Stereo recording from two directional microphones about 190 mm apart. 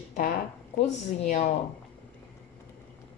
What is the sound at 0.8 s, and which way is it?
Speech, 35° left (ahead or behind).